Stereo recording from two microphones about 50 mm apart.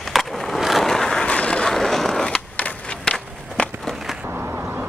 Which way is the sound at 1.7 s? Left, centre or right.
Centre.